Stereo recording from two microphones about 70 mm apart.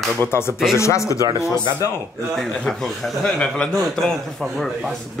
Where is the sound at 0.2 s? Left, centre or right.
Left.